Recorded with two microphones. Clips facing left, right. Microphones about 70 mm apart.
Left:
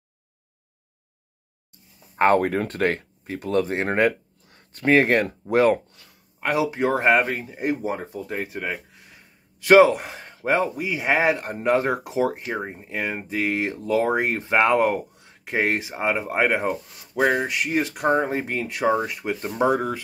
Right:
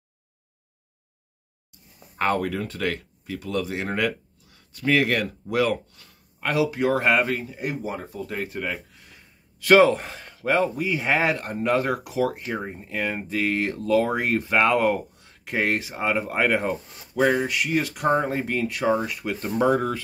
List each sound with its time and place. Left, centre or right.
2.1 s speech: left
19.5 s speech: centre